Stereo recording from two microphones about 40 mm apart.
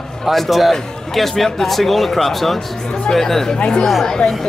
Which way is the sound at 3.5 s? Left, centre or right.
Left.